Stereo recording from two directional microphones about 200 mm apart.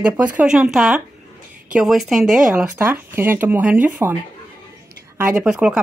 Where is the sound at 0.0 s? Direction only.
5° right (ahead or behind).